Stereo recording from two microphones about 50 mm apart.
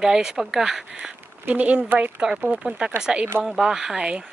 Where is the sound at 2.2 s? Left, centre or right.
Centre.